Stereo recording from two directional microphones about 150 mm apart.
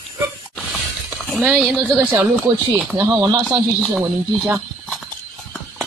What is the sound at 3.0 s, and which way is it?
Speech, 25° right (ahead or behind).